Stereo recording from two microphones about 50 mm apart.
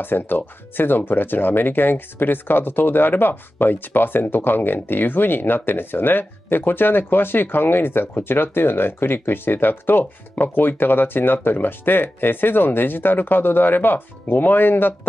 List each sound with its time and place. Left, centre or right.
0.0 s speech: left